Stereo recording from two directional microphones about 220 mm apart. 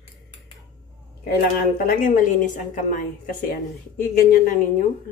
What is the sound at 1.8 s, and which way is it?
A woman's voice, 40° left (ahead or behind).